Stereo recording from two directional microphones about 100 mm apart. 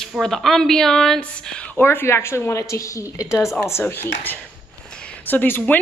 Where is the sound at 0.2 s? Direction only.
Centre (ahead or behind).